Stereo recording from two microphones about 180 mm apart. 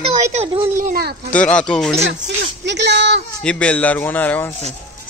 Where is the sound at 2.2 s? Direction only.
75° right (ahead or behind).